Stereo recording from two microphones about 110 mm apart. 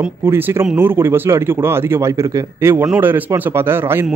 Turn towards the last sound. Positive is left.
turn(degrees=-20)  # may be behind; listen again after turning